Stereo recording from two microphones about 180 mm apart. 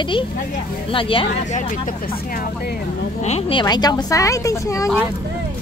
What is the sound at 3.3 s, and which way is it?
A woman's voice, 35° left (ahead or behind).